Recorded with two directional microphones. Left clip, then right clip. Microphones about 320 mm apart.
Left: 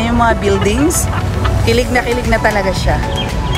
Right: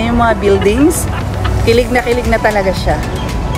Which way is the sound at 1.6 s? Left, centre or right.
Centre.